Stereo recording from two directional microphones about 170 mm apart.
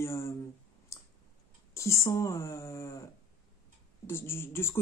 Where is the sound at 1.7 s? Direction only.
15° left (ahead or behind).